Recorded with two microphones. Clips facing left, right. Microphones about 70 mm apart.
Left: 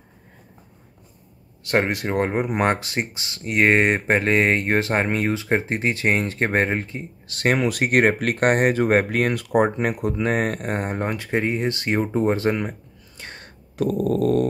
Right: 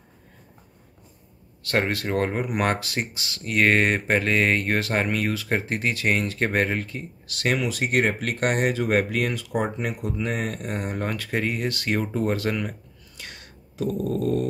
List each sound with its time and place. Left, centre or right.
1.6 s speech: left
11.0 s speech: left
13.2 s whispering: left
13.7 s dog: left